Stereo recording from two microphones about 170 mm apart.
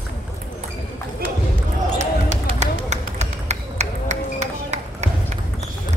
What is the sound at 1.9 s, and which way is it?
Basketball bounce, 40° right (ahead or behind).